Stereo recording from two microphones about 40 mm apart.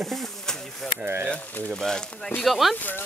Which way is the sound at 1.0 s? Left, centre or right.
Right.